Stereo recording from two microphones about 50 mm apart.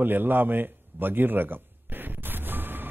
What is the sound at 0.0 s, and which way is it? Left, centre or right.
A man's voice, right.